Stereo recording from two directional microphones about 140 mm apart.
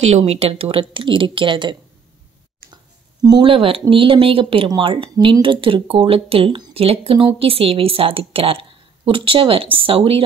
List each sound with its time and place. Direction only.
0.0 s speech: 50° right (ahead or behind)
2.7 s a sound: 30° right (ahead or behind)
3.4 s speech: 40° right (ahead or behind)